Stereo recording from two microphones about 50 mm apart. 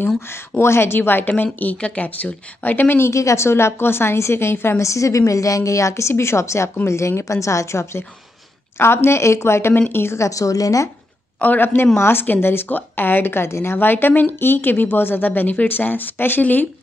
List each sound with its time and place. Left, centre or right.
0.6 s a woman's voice: left
3.0 s a woman's voice: left
4.8 s a woman's voice: left
8.7 s a woman's voice: left
9.8 s a woman's voice: left
10.1 s a woman's voice: left
11.6 s a woman's voice: left
13.7 s speech: left